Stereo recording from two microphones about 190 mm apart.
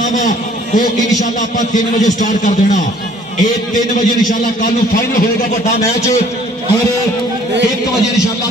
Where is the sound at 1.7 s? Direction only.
40° left (ahead or behind).